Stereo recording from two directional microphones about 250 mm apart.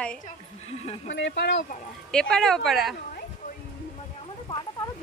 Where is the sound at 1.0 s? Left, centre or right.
Left.